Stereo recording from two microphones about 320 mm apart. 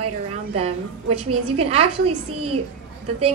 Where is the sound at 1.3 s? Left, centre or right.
Centre.